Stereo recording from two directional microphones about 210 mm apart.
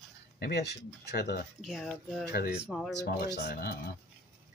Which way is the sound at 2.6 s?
Centre (ahead or behind).